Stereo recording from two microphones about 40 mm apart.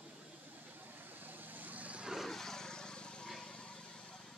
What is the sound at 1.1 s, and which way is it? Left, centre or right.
Vehicle, right.